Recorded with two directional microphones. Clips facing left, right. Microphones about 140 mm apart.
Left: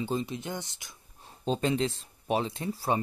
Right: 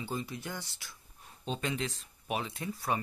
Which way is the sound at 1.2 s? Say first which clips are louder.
Left 7 dB; 35° left (ahead or behind).